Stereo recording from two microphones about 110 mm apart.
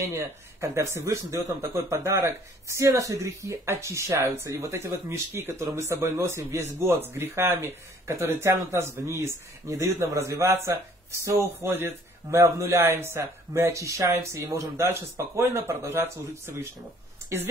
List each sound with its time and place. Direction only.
0.0 s speech: 25° right (ahead or behind)